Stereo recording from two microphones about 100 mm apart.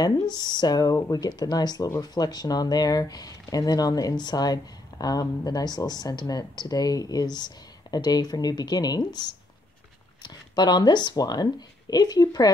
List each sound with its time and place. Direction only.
0.0 s speech: 45° left (ahead or behind)
10.2 s speech: 45° left (ahead or behind)